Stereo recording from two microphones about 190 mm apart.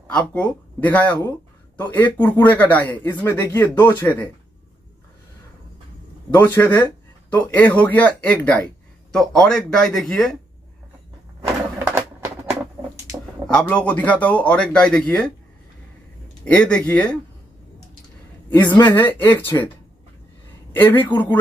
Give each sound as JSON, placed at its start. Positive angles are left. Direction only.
{"t": 0.1, "sound": "speech", "side_deg": 5}
{"t": 6.3, "sound": "speech", "side_deg": 10}
{"t": 11.4, "sound": "a sound", "side_deg": -15}
{"t": 13.5, "sound": "speech", "side_deg": 5}
{"t": 16.4, "sound": "speech", "side_deg": 5}
{"t": 18.7, "sound": "speech", "side_deg": 10}
{"t": 20.7, "sound": "speech", "side_deg": 10}